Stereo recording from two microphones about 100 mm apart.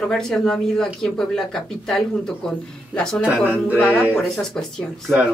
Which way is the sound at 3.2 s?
15° right (ahead or behind).